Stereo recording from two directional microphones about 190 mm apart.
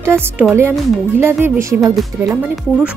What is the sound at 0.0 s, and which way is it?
Speech, 10° right (ahead or behind).